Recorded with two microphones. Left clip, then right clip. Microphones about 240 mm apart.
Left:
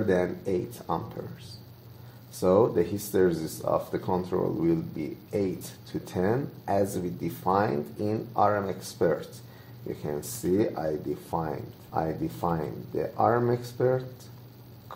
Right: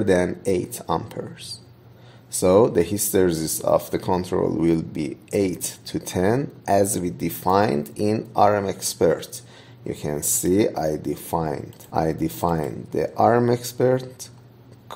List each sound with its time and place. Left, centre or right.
0.0 s speech: right
2.4 s speech: right